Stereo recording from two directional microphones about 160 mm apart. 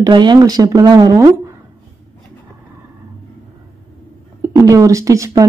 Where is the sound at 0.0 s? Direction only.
25° right (ahead or behind).